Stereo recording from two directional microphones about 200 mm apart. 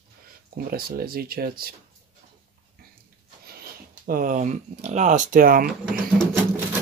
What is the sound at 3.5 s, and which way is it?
Speech, 50° right (ahead or behind).